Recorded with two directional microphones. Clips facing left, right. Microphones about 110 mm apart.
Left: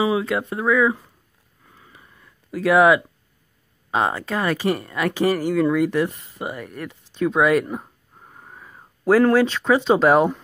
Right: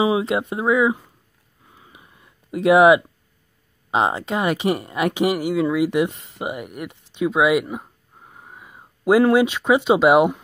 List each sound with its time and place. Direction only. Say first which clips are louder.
0.0 s speech: right 2 dB; 25° right (ahead or behind)
1.7 s a sound: right 1 dB; 15° right (ahead or behind)
3.9 s speech: right 2 dB; 20° right (ahead or behind)